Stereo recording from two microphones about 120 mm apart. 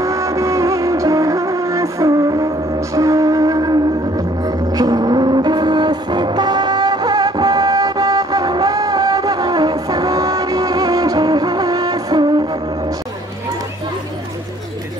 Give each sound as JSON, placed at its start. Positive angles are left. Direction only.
{"t": 0.0, "sound": "music", "side_deg": -25}